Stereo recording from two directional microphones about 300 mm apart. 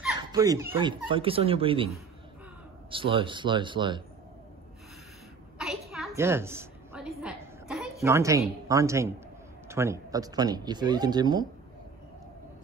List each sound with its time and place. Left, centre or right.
0.3 s speech: centre
2.9 s speech: centre
5.6 s a sound: centre
9.7 s speech: centre